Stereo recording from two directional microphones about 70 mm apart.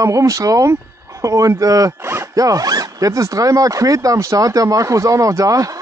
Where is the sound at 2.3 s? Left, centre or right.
Right.